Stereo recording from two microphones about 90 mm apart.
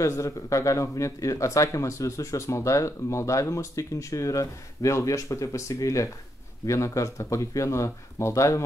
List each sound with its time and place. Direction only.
0.0 s speech: 35° left (ahead or behind)